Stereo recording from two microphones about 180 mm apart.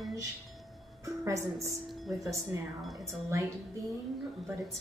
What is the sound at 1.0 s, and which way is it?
Speech, 15° right (ahead or behind).